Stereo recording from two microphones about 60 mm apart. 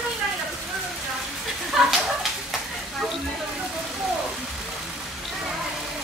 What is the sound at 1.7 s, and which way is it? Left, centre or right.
Speech, centre.